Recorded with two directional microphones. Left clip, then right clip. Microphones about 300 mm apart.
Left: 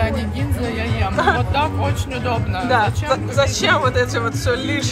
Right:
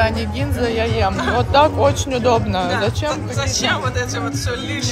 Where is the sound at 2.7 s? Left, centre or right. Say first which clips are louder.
Left 3 dB; centre.